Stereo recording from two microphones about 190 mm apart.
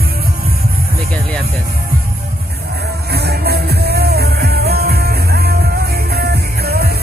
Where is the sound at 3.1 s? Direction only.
55° right (ahead or behind).